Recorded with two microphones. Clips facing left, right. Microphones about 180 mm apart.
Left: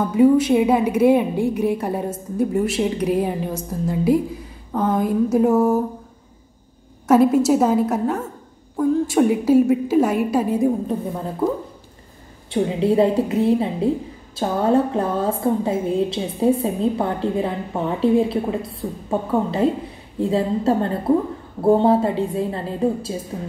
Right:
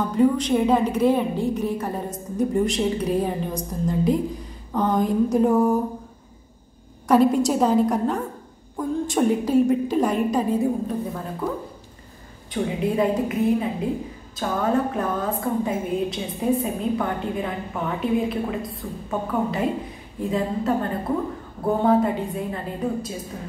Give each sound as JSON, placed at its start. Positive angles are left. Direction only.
{"t": 0.1, "sound": "a woman's voice", "side_deg": 10}
{"t": 7.1, "sound": "a woman's voice", "side_deg": 5}
{"t": 12.4, "sound": "a woman's voice", "side_deg": 25}